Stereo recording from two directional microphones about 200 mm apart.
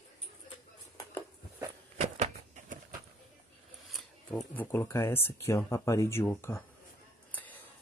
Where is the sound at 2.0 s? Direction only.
35° right (ahead or behind).